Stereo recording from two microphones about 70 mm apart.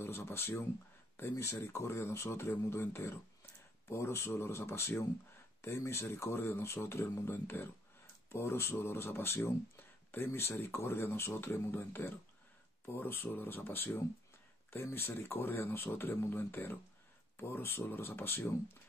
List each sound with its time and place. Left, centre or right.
0.0 s speech: left